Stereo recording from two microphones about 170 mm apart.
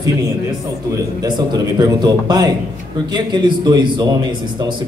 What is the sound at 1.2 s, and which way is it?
A man's voice, 25° right (ahead or behind).